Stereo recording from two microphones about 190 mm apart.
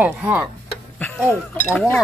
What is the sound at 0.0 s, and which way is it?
Speech, 10° right (ahead or behind).